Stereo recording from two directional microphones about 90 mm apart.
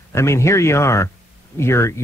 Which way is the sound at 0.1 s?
30° left (ahead or behind).